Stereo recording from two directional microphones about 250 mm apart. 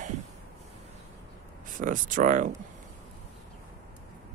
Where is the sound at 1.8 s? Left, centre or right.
Right.